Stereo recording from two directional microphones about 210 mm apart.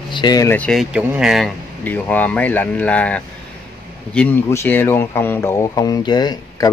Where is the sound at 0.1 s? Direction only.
20° left (ahead or behind).